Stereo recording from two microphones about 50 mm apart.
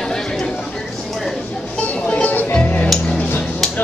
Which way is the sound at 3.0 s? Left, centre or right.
Left.